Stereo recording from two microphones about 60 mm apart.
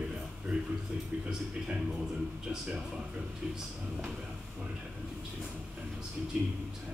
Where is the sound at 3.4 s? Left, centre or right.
Centre.